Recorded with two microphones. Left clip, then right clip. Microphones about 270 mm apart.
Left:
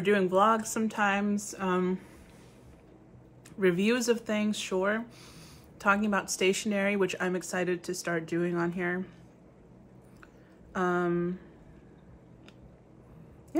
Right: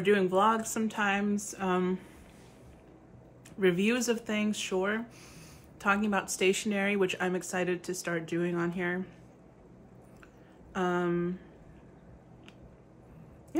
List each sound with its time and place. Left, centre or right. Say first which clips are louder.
0.0 s a woman's voice: left 1 dB; centre
3.5 s a woman's voice: left 1 dB; centre
10.7 s a woman's voice: left 2 dB; centre